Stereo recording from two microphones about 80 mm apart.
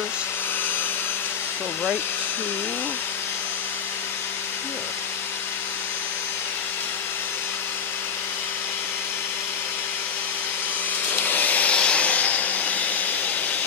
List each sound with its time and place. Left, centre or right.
11.1 s vacuum cleaner: left